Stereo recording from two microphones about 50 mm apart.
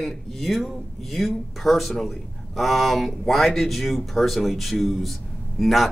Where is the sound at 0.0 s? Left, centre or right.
Centre.